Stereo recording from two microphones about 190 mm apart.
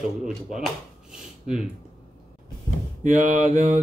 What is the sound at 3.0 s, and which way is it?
Mantra, 40° right (ahead or behind).